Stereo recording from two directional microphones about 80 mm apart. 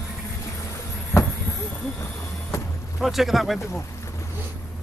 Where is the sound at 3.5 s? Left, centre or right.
Left.